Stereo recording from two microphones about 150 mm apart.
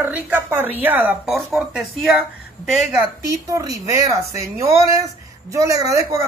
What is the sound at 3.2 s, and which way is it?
Speech, 20° right (ahead or behind).